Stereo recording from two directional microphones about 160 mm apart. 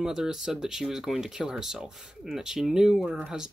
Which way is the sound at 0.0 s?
5° right (ahead or behind).